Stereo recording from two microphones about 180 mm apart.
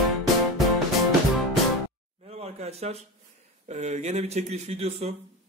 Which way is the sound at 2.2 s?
35° right (ahead or behind).